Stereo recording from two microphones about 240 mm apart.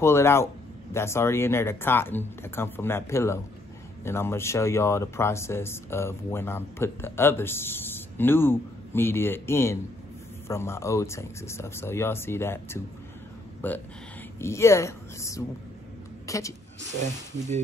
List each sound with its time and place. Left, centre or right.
0.0 s a woman's voice: centre